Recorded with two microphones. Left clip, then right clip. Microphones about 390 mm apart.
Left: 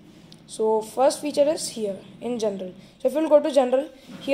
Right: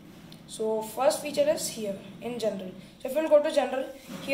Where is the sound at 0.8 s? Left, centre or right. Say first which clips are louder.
Left 5 dB; centre.